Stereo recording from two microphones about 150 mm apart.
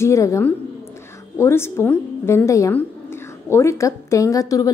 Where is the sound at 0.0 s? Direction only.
20° left (ahead or behind).